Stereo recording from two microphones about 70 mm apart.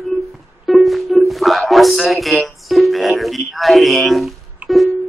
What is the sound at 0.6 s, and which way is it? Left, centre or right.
Speech, centre.